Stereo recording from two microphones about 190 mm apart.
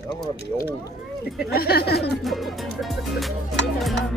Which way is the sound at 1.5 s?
55° left (ahead or behind).